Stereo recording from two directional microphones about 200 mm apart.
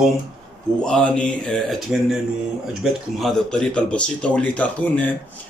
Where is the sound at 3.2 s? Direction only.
5° left (ahead or behind).